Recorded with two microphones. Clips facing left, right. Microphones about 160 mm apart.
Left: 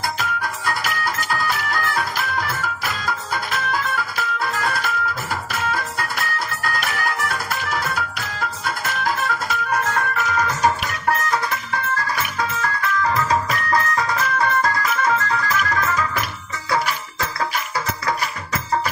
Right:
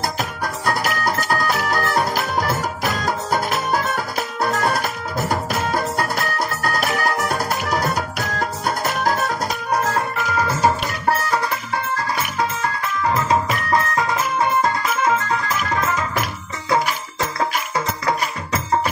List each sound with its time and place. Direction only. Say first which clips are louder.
0.0 s music: right 1 dB; 40° right (ahead or behind)